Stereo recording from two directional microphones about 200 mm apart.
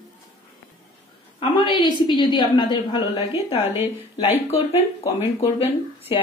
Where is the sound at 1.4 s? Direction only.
25° left (ahead or behind).